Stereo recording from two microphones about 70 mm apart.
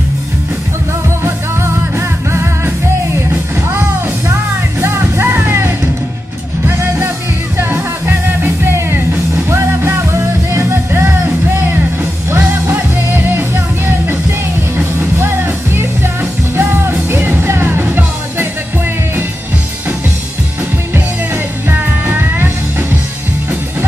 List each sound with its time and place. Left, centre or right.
1.2 s music: right
8.4 s music: right
12.3 s music: right
21.6 s music: right